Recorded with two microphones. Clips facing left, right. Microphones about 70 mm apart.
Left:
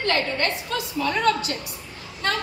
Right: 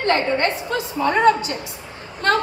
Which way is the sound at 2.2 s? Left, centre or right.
Right.